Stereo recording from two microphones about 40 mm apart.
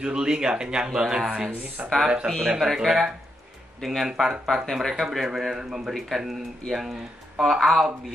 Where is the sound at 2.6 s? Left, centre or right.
Centre.